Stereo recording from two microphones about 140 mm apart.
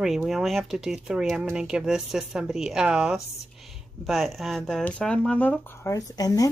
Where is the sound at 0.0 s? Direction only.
Centre (ahead or behind).